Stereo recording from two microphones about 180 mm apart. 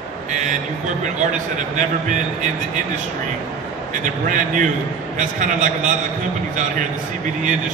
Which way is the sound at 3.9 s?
45° right (ahead or behind).